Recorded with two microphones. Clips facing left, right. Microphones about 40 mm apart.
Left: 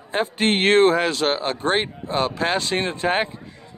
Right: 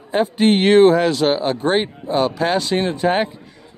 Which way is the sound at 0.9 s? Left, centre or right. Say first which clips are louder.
Right 4 dB; left.